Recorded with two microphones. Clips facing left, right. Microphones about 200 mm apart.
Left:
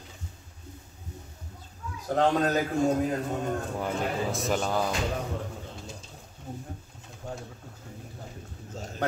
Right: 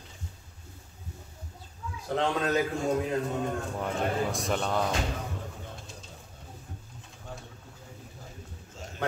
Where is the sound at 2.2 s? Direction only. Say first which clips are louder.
Left 3 dB; 40° left (ahead or behind).